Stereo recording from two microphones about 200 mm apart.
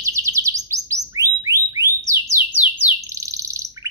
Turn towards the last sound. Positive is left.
turn(degrees=-15)  # may be behind; listen again after turning